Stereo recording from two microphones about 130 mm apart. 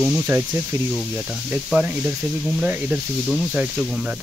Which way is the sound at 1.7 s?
10° right (ahead or behind).